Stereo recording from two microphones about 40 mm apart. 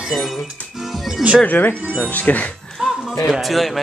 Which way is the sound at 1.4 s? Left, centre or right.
Left.